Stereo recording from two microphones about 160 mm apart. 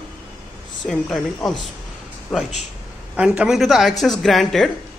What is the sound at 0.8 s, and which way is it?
Speech, centre (ahead or behind).